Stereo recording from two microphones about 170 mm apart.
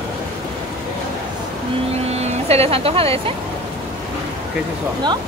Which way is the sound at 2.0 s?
40° right (ahead or behind).